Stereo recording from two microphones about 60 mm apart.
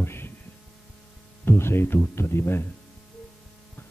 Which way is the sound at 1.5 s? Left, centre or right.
Left.